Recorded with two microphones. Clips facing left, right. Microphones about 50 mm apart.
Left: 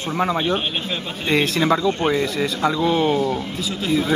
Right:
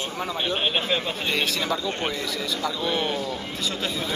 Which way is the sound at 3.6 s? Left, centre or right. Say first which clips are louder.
Left 7 dB; centre.